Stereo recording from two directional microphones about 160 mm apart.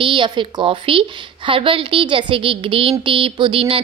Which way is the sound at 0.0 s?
30° right (ahead or behind).